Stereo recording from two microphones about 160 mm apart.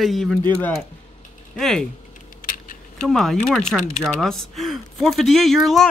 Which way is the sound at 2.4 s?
60° left (ahead or behind).